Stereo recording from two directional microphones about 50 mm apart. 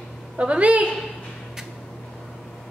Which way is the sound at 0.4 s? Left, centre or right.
Right.